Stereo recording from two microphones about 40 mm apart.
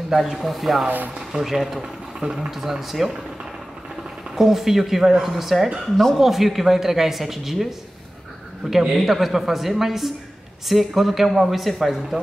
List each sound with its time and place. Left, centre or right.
0.1 s speech: centre
0.8 s speech: right
1.3 s speech: centre
4.4 s speech: centre
8.9 s speech: centre